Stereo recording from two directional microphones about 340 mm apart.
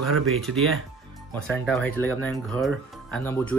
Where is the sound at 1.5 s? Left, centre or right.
Centre.